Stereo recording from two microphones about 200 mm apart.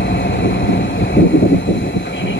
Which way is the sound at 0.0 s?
70° left (ahead or behind).